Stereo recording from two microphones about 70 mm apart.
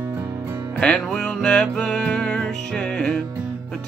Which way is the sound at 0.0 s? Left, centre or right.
Right.